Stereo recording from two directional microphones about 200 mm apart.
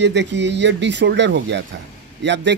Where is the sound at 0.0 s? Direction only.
60° right (ahead or behind).